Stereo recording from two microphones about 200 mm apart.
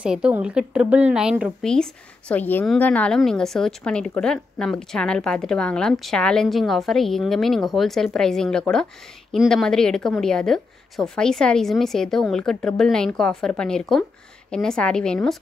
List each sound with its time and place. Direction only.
0.0 s a woman's voice: 5° right (ahead or behind)